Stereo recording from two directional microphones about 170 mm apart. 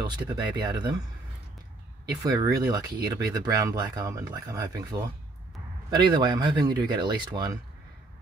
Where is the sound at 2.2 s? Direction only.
20° right (ahead or behind).